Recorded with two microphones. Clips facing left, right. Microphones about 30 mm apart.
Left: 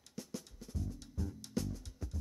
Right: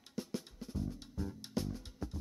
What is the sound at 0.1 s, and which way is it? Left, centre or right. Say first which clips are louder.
Music: right 4 dB; right.